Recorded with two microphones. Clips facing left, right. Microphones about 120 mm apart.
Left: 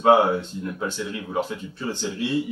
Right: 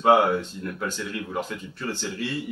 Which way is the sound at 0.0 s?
25° left (ahead or behind).